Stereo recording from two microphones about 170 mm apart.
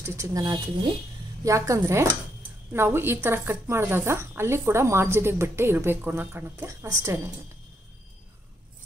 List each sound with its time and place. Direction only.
0.0 s a woman's voice: 15° right (ahead or behind)